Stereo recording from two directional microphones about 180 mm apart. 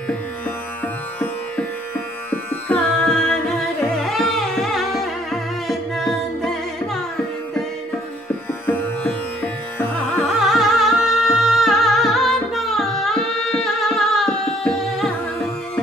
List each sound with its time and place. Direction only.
2.3 s carnatic music: 10° left (ahead or behind)
8.6 s sitar: 10° left (ahead or behind)
10.2 s music: centre (ahead or behind)